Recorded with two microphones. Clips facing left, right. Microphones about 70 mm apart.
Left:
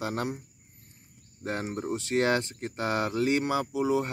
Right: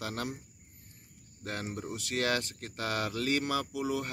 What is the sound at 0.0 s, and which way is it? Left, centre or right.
Speech, left.